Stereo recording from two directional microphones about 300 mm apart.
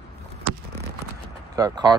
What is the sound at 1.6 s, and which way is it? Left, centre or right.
Speech, centre.